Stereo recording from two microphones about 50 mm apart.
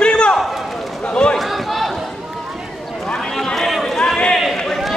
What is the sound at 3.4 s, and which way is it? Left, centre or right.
Run, centre.